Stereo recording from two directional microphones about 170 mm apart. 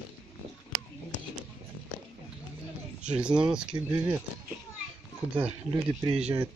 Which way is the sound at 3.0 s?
5° right (ahead or behind).